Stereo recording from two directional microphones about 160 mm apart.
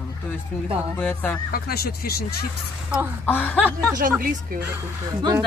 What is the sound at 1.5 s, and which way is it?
Speech, 70° left (ahead or behind).